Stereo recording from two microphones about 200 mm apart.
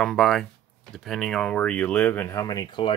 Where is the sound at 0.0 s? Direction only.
Centre (ahead or behind).